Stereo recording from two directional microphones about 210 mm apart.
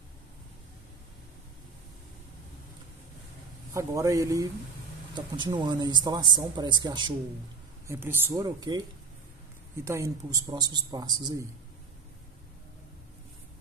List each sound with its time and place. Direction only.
3.7 s speech: 15° right (ahead or behind)
9.8 s speech: 15° right (ahead or behind)